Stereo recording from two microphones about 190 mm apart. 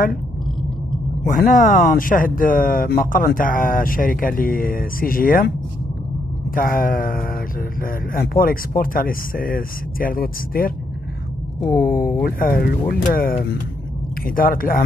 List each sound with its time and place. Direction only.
1.3 s speech: 45° left (ahead or behind)
6.5 s speech: 50° left (ahead or behind)
11.8 s speech: 50° left (ahead or behind)